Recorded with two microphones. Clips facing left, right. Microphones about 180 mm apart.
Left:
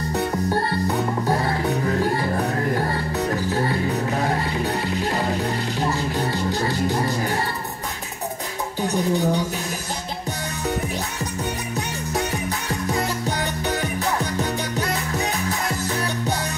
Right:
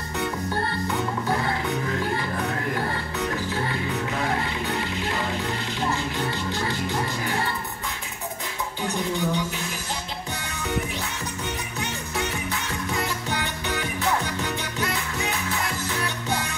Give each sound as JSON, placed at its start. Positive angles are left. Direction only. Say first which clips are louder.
{"t": 0.8, "sound": "music", "louder": "left 4 dB", "side_deg": 35}
{"t": 8.8, "sound": "a sound", "louder": "left 5 dB", "side_deg": 40}
{"t": 12.9, "sound": "music", "louder": "left 3 dB", "side_deg": 40}